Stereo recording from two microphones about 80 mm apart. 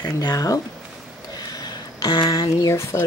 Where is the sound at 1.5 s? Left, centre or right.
Left.